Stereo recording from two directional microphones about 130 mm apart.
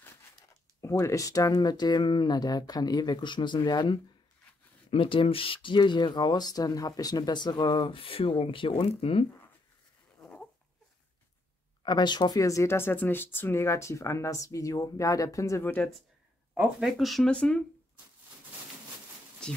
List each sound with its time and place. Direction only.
0.7 s speech: 25° left (ahead or behind); by 9.2 s 50° left (ahead or behind)
10.2 s a sound: 10° left (ahead or behind)
11.8 s speech: 35° left (ahead or behind)
16.5 s speech: centre (ahead or behind)
19.4 s speech: 5° left (ahead or behind)